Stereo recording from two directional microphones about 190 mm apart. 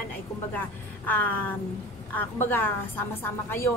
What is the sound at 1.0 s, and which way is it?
A woman's voice, 10° left (ahead or behind).